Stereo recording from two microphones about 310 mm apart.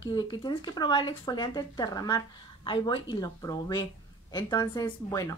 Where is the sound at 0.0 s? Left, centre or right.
Centre.